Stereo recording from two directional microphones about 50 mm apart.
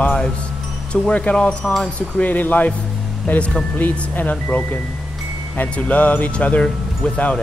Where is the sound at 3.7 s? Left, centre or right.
Left.